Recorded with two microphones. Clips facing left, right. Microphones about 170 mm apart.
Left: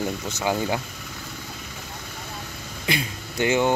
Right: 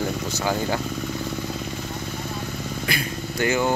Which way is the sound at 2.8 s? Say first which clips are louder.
Left 3 dB; 20° left (ahead or behind).